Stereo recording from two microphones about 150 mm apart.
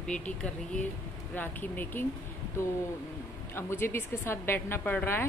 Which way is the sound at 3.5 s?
15° left (ahead or behind).